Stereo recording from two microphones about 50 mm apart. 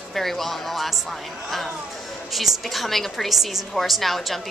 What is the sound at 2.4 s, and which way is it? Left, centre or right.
A woman's voice, centre.